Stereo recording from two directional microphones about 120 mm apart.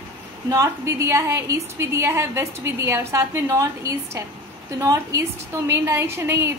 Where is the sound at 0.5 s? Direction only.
25° right (ahead or behind).